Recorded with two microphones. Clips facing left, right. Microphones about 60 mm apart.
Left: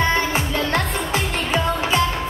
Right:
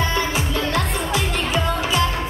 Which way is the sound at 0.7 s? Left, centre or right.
Left.